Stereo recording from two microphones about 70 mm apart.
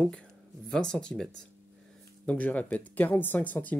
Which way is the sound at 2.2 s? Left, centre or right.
Left.